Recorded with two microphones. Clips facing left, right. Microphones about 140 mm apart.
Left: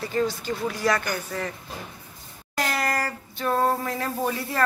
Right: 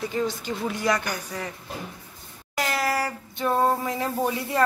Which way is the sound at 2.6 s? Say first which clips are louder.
Right 1 dB; 5° right (ahead or behind).